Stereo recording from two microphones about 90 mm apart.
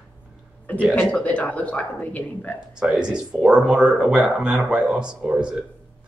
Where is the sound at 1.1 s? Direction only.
15° left (ahead or behind).